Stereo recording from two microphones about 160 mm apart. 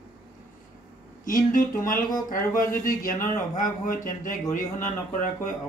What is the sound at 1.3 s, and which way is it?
Speech, 55° left (ahead or behind).